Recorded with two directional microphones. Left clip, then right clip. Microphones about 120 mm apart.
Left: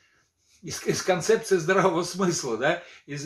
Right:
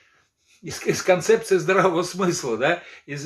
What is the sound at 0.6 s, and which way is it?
Speech, 10° right (ahead or behind).